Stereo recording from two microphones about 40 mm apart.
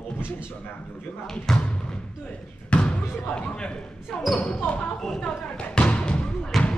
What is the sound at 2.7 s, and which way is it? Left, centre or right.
Speech, left.